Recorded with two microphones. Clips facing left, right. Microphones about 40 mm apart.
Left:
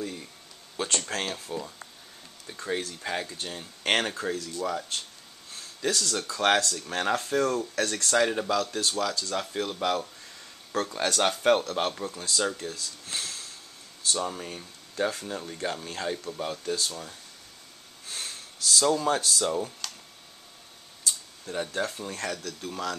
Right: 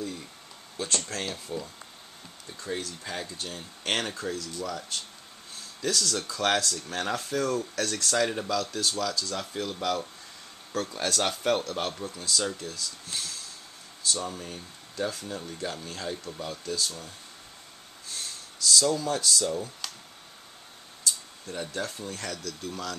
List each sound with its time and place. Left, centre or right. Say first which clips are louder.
0.0 s a sound: even; centre
0.7 s speech: left 2 dB; left
2.7 s speech: left 3 dB; left
15.2 s speech: left 2 dB; centre
16.3 s speech: left 2 dB; left
18.1 s speech: left 2 dB; left
21.5 s speech: left 3 dB; centre